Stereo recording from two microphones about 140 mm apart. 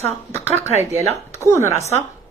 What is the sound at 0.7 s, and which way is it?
Speech, 50° right (ahead or behind).